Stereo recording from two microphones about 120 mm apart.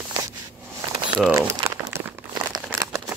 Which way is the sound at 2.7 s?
25° right (ahead or behind).